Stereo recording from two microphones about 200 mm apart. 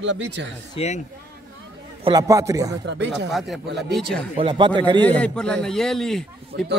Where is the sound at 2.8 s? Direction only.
60° right (ahead or behind).